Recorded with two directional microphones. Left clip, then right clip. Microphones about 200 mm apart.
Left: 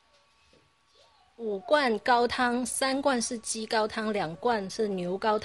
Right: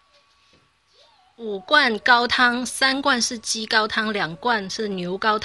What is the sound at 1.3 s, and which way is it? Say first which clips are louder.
A woman's voice: right 7 dB; centre (ahead or behind).